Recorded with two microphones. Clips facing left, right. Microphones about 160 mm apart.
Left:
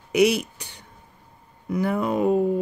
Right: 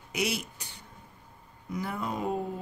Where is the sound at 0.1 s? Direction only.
70° left (ahead or behind).